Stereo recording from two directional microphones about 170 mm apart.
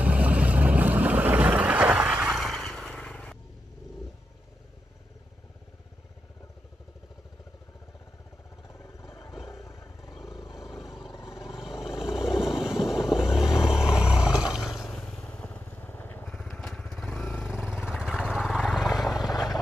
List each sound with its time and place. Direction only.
0.0 s boat: 10° right (ahead or behind)
8.6 s vehicle: 15° left (ahead or behind)
9.5 s roaring cats: 20° left (ahead or behind)
10.2 s vehicle: 20° left (ahead or behind)
12.0 s vehicle: centre (ahead or behind)
16.3 s vehicle: centre (ahead or behind)